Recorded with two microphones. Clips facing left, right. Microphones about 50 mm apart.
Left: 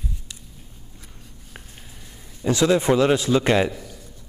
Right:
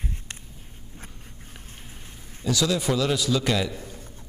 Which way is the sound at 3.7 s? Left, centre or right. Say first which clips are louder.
Even; right.